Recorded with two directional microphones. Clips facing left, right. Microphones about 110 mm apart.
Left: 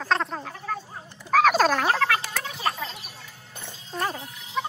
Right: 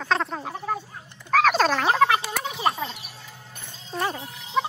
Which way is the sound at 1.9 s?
15° right (ahead or behind).